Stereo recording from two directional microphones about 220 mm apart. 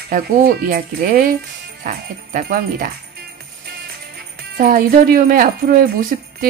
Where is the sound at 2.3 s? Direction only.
40° right (ahead or behind).